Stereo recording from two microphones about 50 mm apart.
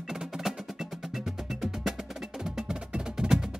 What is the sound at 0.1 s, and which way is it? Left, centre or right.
Wood block, centre.